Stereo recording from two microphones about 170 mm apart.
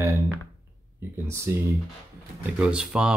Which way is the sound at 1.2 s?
15° right (ahead or behind).